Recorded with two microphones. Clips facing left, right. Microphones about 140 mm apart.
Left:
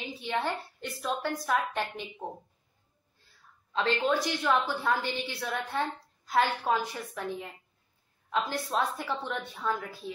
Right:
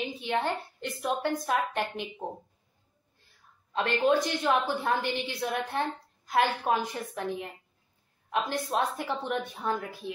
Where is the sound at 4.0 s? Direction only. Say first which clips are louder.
Right 3 dB; 20° right (ahead or behind).